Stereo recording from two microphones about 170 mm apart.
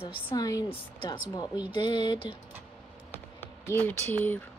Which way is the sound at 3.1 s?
15° left (ahead or behind).